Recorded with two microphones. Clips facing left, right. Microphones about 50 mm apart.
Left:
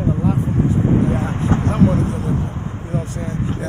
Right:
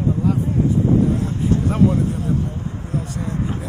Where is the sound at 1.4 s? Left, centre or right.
Left.